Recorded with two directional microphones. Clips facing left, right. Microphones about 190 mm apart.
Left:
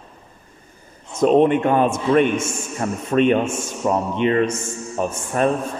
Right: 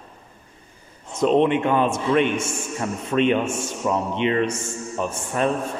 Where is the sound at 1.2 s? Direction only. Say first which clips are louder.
Left 3 dB; 45° left (ahead or behind).